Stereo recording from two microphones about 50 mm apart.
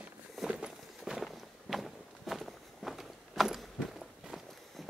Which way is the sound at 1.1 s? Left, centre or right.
Centre.